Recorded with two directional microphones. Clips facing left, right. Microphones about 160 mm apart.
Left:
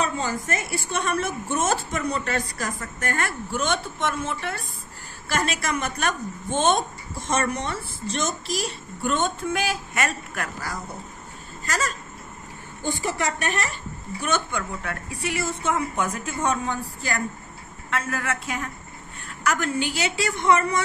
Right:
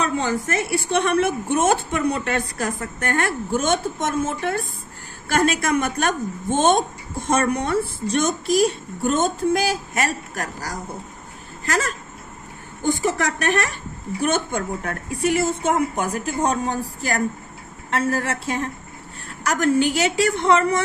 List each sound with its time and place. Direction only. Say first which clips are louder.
0.0 s a woman's voice: right 4 dB; 70° right (ahead or behind); by 10.8 s 40° right (ahead or behind)
11.6 s speech: right 4 dB; 55° right (ahead or behind)
12.8 s a woman's voice: right 5 dB; 65° right (ahead or behind)
14.2 s a woman's voice: right 4 dB; 50° right (ahead or behind)